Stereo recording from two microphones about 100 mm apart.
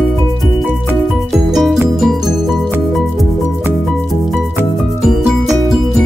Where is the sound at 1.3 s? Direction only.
Centre (ahead or behind).